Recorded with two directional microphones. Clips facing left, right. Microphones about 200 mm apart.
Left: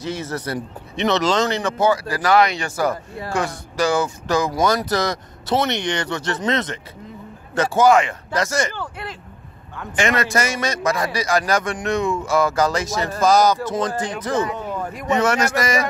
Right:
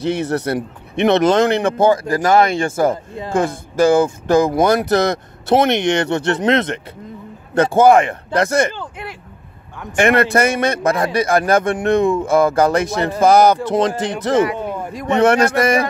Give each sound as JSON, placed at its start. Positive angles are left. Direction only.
{"t": 0.0, "sound": "speech", "side_deg": -65}
{"t": 8.7, "sound": "speech", "side_deg": -15}
{"t": 9.9, "sound": "speech", "side_deg": -60}
{"t": 13.7, "sound": "speech", "side_deg": -85}
{"t": 14.5, "sound": "speech", "side_deg": -10}
{"t": 15.0, "sound": "speech", "side_deg": -60}